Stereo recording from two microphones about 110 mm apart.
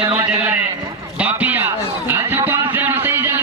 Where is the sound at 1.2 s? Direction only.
15° right (ahead or behind).